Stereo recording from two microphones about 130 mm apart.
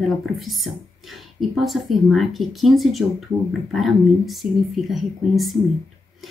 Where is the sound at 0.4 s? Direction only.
Centre (ahead or behind).